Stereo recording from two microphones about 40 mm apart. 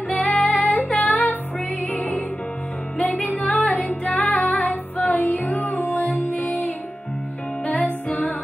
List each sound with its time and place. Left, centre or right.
0.1 s female singing: left
0.9 s music: left